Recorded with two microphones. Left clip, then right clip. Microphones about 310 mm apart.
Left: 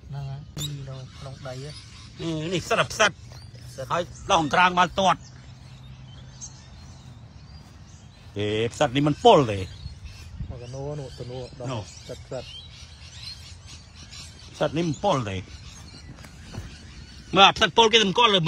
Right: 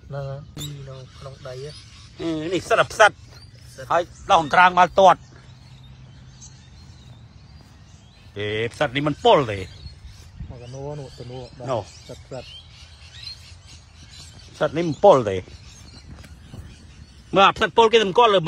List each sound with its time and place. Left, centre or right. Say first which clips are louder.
2.1 s speech: right 4 dB; centre
8.4 s speech: even; centre
10.7 s speech: right 1 dB; right
14.6 s speech: right 7 dB; centre
17.3 s speech: right 1 dB; centre